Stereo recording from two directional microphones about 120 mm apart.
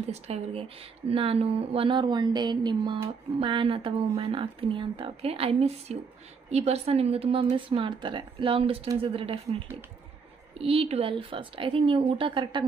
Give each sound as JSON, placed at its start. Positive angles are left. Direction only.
{"t": 0.1, "sound": "a woman's voice", "side_deg": -60}
{"t": 10.6, "sound": "speech", "side_deg": -50}